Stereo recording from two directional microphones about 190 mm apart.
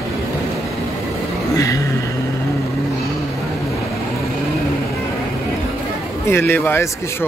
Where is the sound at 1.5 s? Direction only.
15° left (ahead or behind).